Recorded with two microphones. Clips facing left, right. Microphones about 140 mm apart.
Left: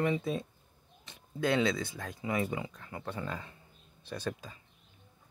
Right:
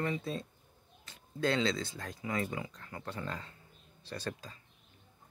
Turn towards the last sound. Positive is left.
turn(degrees=15)  # may be behind; listen again after turning